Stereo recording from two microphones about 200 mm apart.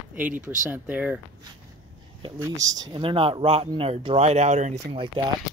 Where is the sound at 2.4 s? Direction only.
20° right (ahead or behind).